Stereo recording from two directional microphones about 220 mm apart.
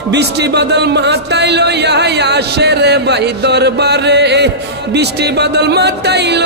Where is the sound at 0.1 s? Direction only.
50° right (ahead or behind).